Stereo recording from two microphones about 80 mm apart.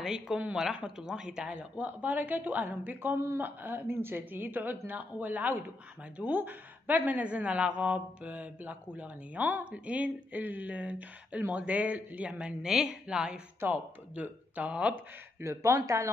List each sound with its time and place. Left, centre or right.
0.0 s speech: centre
13.6 s speech: right
15.4 s speech: right